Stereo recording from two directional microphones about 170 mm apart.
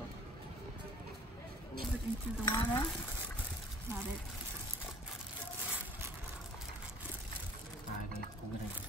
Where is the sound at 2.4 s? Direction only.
20° left (ahead or behind).